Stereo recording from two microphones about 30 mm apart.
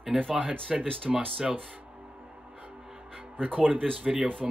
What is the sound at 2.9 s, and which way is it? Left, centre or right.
Music, right.